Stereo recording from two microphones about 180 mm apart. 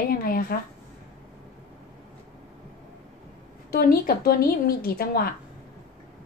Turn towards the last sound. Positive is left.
turn(degrees=60)  # may be behind; listen again after turning